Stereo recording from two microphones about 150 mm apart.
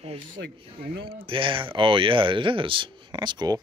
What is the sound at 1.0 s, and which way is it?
Speech, 35° right (ahead or behind).